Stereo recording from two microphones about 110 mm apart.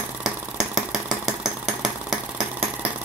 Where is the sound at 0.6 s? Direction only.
5° right (ahead or behind).